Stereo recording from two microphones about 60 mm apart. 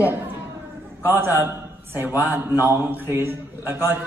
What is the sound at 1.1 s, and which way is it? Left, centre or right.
A man's voice, right.